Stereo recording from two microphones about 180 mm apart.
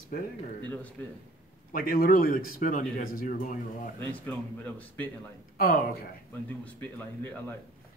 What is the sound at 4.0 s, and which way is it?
Speech, 10° left (ahead or behind).